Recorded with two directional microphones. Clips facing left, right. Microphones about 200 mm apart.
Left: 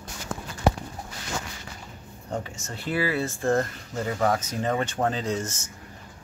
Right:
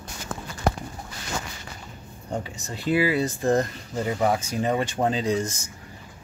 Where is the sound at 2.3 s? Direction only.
15° right (ahead or behind).